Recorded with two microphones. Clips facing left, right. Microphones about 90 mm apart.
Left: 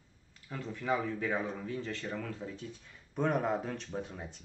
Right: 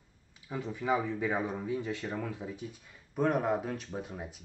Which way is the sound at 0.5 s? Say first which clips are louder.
Right 3 dB; 15° right (ahead or behind).